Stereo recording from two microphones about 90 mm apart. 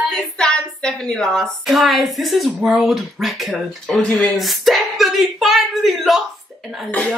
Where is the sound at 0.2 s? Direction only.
10° left (ahead or behind).